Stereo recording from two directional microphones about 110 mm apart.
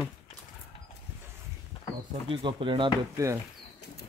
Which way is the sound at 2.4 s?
50° right (ahead or behind).